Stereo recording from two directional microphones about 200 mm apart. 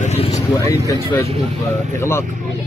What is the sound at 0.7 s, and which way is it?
Speech, 15° left (ahead or behind).